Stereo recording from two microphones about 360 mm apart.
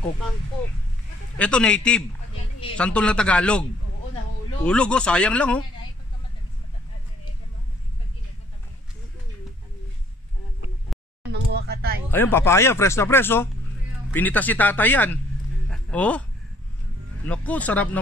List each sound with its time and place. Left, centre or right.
1.4 s speech: centre
4.6 s speech: centre
11.5 s a sound: right
12.1 s speech: centre
15.7 s a sound: centre
17.3 s speech: centre